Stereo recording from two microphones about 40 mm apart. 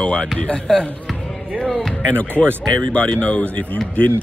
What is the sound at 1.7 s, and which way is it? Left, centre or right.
Speech, centre.